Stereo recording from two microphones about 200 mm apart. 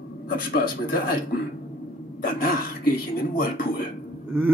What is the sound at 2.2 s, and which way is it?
Speech, 45° left (ahead or behind).